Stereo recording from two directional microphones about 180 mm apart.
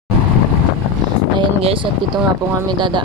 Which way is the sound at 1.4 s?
30° right (ahead or behind).